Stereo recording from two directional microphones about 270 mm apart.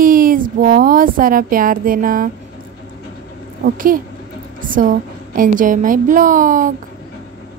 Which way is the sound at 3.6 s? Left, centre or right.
Right.